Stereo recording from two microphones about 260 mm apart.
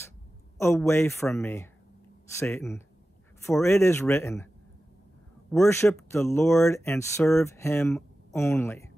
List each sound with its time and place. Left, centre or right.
0.6 s speech: centre
5.5 s speech: centre